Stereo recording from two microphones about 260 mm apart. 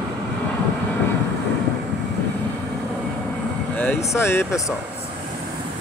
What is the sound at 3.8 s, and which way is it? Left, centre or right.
Speech, centre.